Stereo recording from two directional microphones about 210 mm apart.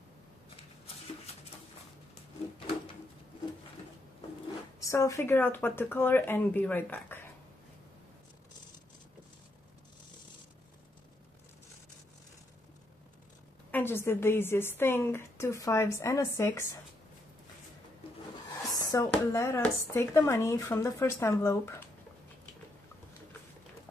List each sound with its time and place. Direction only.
4.7 s a woman's voice: 15° left (ahead or behind)
13.7 s a woman's voice: 10° left (ahead or behind)
18.5 s a sound: 15° left (ahead or behind)
19.0 s a woman's voice: 10° left (ahead or behind)